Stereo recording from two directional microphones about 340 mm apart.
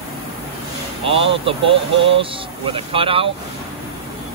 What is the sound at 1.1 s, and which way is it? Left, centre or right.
Speech, centre.